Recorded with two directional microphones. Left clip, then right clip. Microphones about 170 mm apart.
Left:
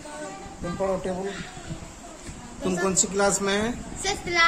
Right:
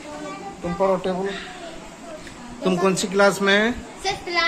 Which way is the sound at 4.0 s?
15° left (ahead or behind).